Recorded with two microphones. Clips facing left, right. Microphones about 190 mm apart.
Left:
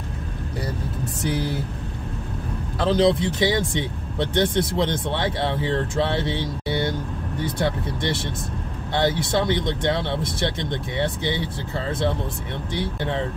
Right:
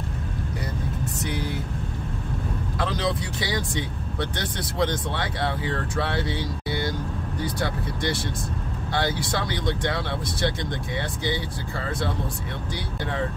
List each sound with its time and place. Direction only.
2.8 s speech: 30° left (ahead or behind)